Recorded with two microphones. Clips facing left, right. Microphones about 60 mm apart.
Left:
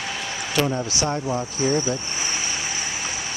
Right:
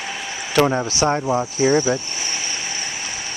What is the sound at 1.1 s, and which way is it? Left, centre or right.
Speech, right.